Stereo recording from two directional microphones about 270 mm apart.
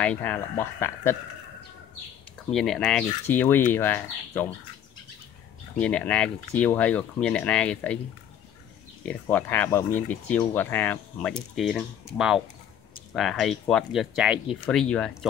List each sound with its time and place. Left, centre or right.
0.0 s speech: centre
2.5 s speech: centre
5.8 s speech: centre
9.0 s speech: centre